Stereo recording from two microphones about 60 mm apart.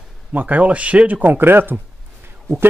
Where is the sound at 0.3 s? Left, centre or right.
Right.